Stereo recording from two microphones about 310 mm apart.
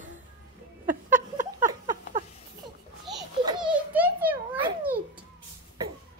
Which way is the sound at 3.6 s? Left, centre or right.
Centre.